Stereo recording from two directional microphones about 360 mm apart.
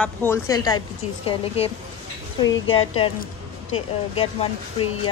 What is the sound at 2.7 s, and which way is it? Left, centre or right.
Speech, centre.